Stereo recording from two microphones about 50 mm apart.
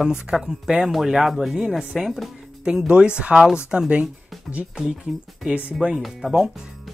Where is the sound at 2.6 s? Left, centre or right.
Centre.